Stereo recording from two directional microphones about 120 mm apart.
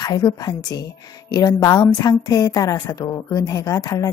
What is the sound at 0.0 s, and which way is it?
A woman's voice, 35° left (ahead or behind).